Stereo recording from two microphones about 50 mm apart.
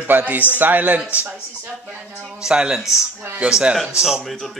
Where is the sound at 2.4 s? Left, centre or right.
Centre.